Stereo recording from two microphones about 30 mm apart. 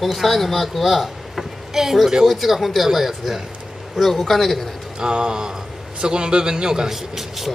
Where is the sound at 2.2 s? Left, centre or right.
Centre.